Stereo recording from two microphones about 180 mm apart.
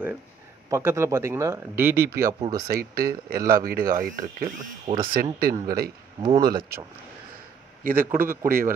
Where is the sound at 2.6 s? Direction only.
55° right (ahead or behind).